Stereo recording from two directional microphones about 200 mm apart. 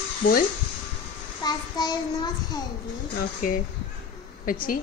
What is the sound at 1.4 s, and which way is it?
A child's voice, 20° left (ahead or behind).